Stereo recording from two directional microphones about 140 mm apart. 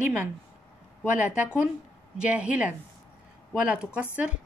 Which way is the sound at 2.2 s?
10° right (ahead or behind).